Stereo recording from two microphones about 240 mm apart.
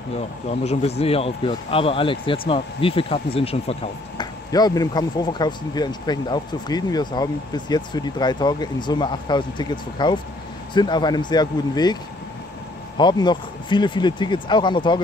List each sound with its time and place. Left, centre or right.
0.5 s speech: left